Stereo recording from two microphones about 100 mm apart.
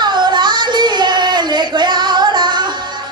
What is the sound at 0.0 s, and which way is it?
Child singing, 50° right (ahead or behind).